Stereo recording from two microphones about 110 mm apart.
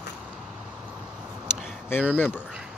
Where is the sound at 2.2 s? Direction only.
15° left (ahead or behind).